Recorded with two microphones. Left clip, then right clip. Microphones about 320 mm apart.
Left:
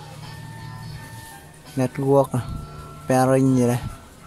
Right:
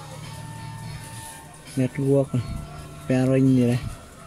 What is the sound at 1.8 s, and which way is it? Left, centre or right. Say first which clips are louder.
Speech: left 4 dB; left.